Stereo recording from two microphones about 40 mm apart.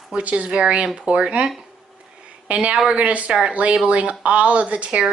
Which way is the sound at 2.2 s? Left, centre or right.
Right.